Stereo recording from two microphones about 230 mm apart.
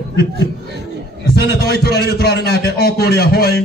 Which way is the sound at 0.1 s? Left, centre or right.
Right.